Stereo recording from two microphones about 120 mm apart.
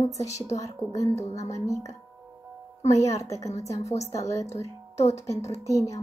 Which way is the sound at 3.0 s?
25° left (ahead or behind).